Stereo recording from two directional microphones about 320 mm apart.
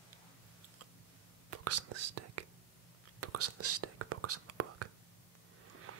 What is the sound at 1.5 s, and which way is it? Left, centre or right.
Whispering, right.